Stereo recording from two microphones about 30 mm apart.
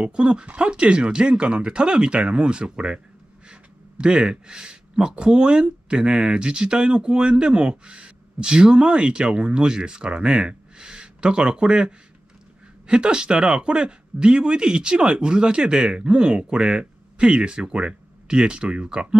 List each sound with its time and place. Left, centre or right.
0.0 s speech: right
4.0 s speech: right